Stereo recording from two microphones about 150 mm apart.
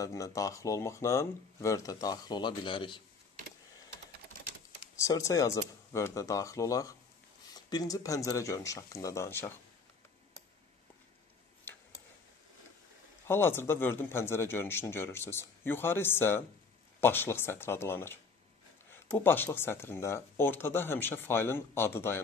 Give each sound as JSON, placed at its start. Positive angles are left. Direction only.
{"t": 0.0, "sound": "speech", "side_deg": 20}
{"t": 4.9, "sound": "speech", "side_deg": 20}
{"t": 11.7, "sound": "a sound", "side_deg": 15}
{"t": 13.3, "sound": "speech", "side_deg": 15}